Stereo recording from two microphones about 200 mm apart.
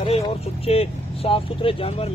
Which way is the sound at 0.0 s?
30° left (ahead or behind).